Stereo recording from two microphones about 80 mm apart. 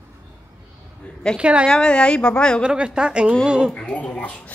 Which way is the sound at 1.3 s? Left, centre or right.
Centre.